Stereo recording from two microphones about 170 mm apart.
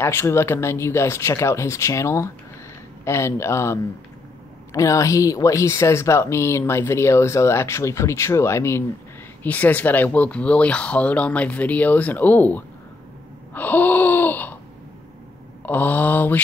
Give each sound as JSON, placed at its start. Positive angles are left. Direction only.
{"t": 0.0, "sound": "speech", "side_deg": 15}
{"t": 13.5, "sound": "gasp", "side_deg": 10}
{"t": 15.6, "sound": "speech", "side_deg": 10}